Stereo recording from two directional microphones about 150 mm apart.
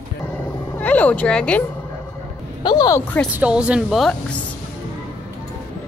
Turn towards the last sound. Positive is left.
turn(degrees=0)  # may be behind; listen again after turning